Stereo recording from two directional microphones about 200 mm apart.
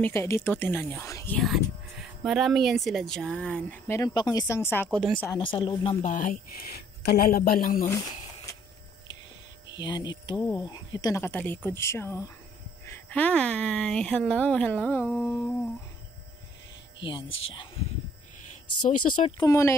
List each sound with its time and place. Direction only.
0.0 s speech: 15° left (ahead or behind)
4.8 s speech: centre (ahead or behind)
5.2 s speech: 20° left (ahead or behind)
6.0 s a man's voice: 40° left (ahead or behind)
9.7 s speech: 20° left (ahead or behind)
17.0 s speech: 65° left (ahead or behind)
19.1 s speech: 30° left (ahead or behind)
19.4 s speech: 15° left (ahead or behind)